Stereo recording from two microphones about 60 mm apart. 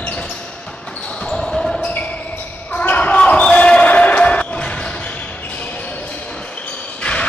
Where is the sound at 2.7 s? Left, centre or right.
Left.